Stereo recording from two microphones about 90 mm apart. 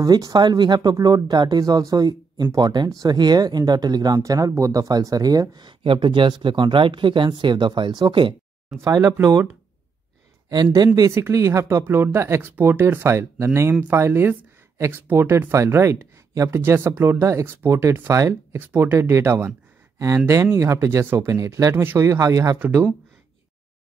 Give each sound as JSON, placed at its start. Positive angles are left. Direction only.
{"t": 0.0, "sound": "speech", "side_deg": -45}
{"t": 8.8, "sound": "speech", "side_deg": -30}
{"t": 10.5, "sound": "speech", "side_deg": -50}
{"t": 11.0, "sound": "speech", "side_deg": -35}
{"t": 20.5, "sound": "speech", "side_deg": -35}
{"t": 21.3, "sound": "speech", "side_deg": -40}